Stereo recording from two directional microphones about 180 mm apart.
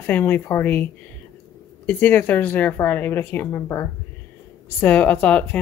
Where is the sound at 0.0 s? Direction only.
10° left (ahead or behind).